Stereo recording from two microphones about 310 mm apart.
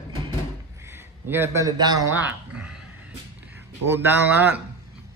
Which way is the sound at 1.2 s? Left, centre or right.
Centre.